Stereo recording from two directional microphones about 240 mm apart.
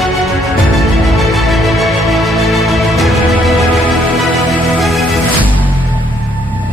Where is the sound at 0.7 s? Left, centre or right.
Centre.